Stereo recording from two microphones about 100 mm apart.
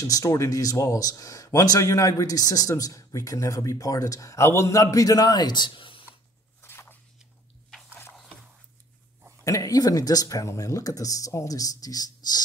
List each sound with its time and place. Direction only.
0.0 s speech: 35° left (ahead or behind); by 6.0 s 60° left (ahead or behind)
6.6 s a sound: 25° left (ahead or behind)
9.4 s speech: 35° left (ahead or behind)